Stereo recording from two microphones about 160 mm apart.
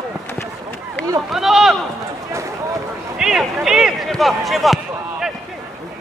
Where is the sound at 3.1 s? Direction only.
5° right (ahead or behind).